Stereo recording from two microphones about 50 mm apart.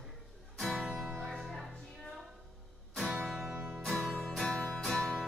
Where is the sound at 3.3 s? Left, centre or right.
Centre.